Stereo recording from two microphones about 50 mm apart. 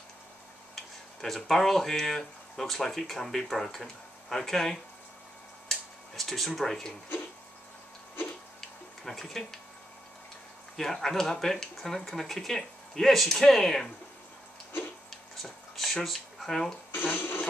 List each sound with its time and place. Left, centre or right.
0.7 s speech: centre
5.7 s tick-tock: centre
8.5 s tick-tock: centre
10.8 s speech: centre
15.7 s a sound: centre
16.9 s a sound: left